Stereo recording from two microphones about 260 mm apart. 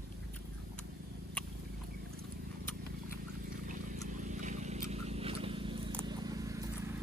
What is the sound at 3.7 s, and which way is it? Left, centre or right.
Vehicle, right.